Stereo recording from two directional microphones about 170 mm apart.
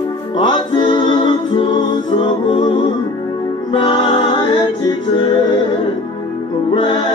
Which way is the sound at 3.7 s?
30° left (ahead or behind).